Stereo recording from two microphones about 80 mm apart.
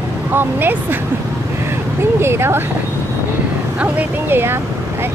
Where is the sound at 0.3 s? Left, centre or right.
Right.